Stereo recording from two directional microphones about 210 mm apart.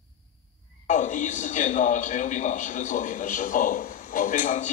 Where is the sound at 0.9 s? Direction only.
35° left (ahead or behind).